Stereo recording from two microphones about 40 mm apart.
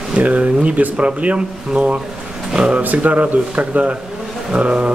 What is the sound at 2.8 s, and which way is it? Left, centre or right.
Speech, right.